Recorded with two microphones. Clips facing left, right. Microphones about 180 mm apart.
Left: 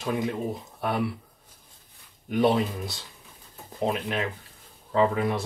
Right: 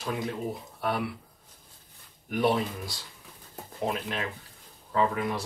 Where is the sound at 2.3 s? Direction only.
25° left (ahead or behind).